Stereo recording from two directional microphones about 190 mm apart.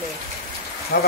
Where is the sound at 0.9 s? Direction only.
60° left (ahead or behind).